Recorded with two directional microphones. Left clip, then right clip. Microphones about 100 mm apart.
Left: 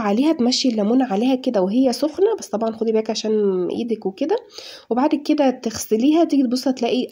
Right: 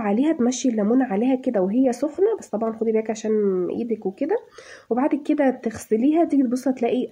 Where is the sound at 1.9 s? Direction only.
15° left (ahead or behind).